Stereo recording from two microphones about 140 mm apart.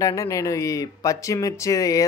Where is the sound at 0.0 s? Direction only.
25° left (ahead or behind).